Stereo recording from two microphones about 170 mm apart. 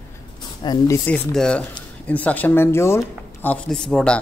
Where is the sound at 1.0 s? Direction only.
5° left (ahead or behind).